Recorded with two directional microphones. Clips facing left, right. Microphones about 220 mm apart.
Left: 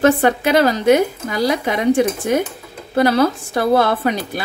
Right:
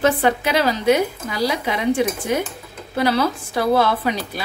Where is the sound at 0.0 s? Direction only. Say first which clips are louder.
Left 4 dB; 50° left (ahead or behind).